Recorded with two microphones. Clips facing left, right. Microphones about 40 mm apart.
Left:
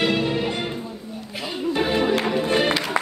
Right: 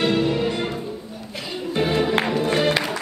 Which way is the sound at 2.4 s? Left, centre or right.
Left.